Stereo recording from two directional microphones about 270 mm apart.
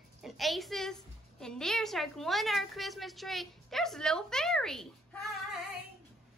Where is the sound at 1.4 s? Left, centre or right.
Centre.